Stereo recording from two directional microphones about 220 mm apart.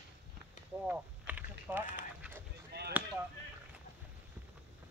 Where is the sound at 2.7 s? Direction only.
50° right (ahead or behind).